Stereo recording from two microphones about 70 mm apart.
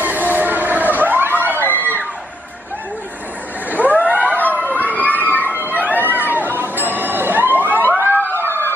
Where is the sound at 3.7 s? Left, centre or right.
Left.